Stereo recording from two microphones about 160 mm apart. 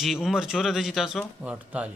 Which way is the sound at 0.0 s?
5° right (ahead or behind).